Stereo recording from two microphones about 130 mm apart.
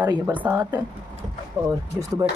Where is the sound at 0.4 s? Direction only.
15° right (ahead or behind).